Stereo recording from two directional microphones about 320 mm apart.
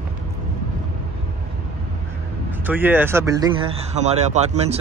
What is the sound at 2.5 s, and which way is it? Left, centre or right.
Speech, centre.